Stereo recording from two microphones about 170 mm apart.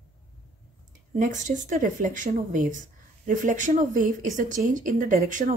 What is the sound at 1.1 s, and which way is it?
Speech, 50° right (ahead or behind).